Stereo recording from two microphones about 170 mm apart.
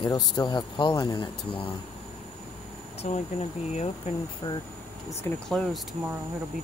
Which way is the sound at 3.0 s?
40° left (ahead or behind).